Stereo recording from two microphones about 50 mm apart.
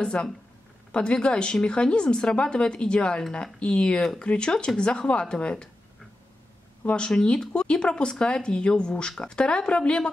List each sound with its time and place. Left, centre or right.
0.0 s speech: centre
6.9 s speech: centre